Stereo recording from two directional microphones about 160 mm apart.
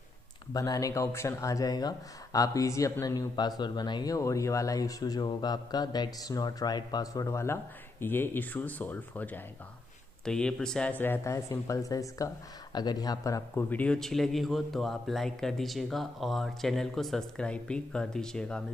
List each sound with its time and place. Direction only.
0.5 s speech: 20° left (ahead or behind)
13.7 s a man's voice: 10° left (ahead or behind)